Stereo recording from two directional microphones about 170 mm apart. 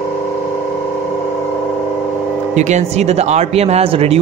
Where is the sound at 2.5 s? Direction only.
45° right (ahead or behind).